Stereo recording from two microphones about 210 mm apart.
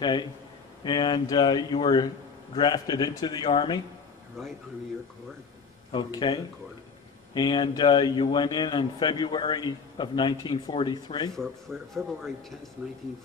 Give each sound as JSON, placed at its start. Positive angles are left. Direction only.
{"t": 0.0, "sound": "a man's voice", "side_deg": 20}
{"t": 4.4, "sound": "speech", "side_deg": 0}
{"t": 5.9, "sound": "a man's voice", "side_deg": 20}
{"t": 11.3, "sound": "speech", "side_deg": 0}